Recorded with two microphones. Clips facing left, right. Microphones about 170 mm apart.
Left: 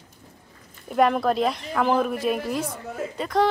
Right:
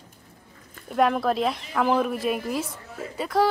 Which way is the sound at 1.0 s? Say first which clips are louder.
Left 2 dB; centre (ahead or behind).